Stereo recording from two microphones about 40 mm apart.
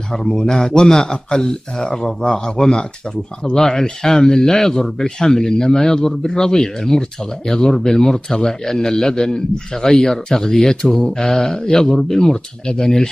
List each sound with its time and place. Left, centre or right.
0.1 s a man's voice: centre